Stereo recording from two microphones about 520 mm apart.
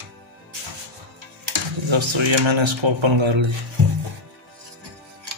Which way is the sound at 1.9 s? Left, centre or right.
Right.